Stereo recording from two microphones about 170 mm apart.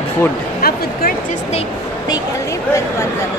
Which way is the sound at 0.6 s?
65° left (ahead or behind).